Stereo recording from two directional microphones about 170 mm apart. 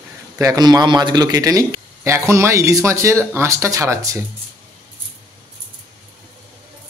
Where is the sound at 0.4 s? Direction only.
20° right (ahead or behind).